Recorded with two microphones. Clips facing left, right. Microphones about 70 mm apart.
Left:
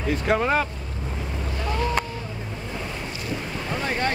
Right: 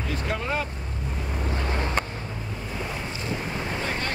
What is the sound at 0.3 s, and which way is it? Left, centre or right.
Speech, left.